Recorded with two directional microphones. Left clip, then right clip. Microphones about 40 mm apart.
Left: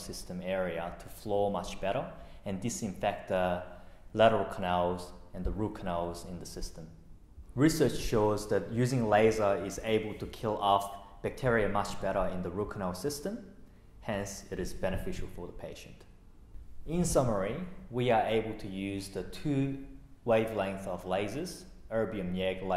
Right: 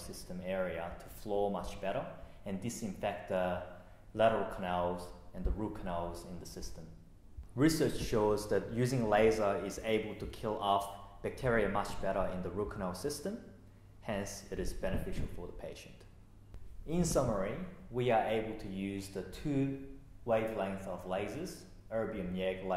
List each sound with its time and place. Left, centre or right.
0.0 s speech: left